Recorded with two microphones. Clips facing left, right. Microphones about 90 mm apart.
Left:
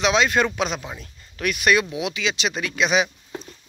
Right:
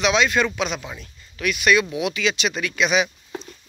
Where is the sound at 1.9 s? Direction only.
25° left (ahead or behind).